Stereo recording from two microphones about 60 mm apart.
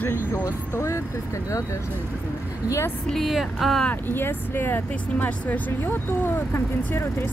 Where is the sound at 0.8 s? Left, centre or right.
Left.